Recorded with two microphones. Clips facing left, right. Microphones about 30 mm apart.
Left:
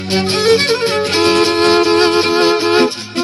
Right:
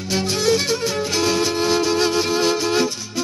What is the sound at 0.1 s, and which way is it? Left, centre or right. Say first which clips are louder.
Music: left 7 dB; left.